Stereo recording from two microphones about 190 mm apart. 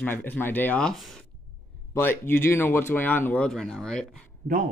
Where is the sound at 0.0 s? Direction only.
10° left (ahead or behind).